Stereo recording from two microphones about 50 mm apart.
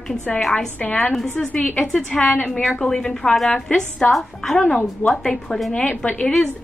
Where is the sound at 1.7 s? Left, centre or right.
Centre.